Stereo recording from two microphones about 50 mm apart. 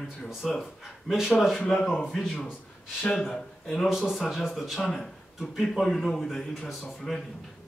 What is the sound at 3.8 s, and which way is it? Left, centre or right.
A man's voice, centre.